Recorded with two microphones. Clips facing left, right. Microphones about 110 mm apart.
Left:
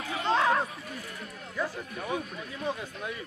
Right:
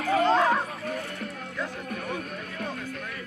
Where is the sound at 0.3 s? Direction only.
Centre (ahead or behind).